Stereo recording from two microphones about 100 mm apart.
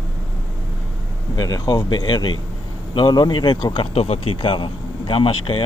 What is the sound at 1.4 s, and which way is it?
Speech, 40° left (ahead or behind).